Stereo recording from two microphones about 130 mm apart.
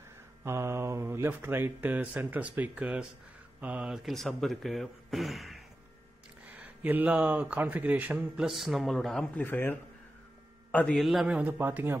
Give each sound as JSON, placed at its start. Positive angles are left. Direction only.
{"t": 0.4, "sound": "speech", "side_deg": -20}
{"t": 6.4, "sound": "speech", "side_deg": -10}
{"t": 8.5, "sound": "a man's voice", "side_deg": 0}
{"t": 11.0, "sound": "speech", "side_deg": 0}